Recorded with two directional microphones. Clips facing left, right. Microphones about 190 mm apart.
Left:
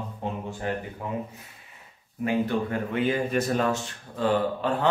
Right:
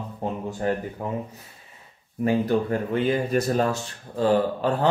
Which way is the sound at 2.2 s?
35° right (ahead or behind).